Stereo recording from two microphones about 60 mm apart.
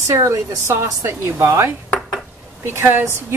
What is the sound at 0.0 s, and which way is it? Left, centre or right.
A woman's voice, right.